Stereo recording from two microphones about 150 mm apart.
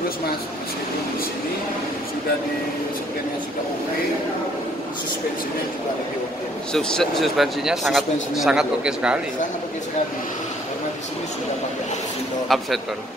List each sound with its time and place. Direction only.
6.7 s speech: 5° left (ahead or behind)
12.4 s speech: centre (ahead or behind)